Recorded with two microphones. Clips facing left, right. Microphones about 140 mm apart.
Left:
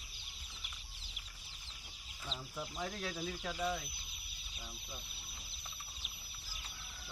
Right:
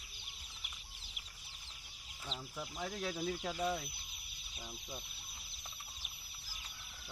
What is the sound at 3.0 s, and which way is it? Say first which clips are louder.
Speech: right 3 dB; 15° right (ahead or behind).